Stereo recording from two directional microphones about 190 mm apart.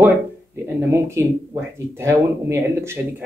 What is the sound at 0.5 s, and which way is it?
Speech, 15° right (ahead or behind).